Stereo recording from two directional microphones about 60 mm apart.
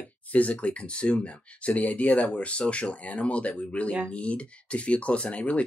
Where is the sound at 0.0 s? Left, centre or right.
Left.